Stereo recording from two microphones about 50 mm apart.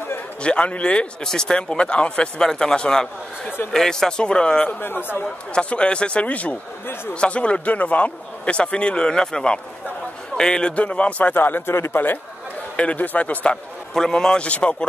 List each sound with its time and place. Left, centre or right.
0.4 s a man's voice: left
1.2 s speech: centre
4.7 s speech: left
5.5 s a man's voice: centre
11.3 s a man's voice: left
11.6 s a man's voice: left
11.9 s a man's voice: left
12.7 s a man's voice: left
13.9 s speech: centre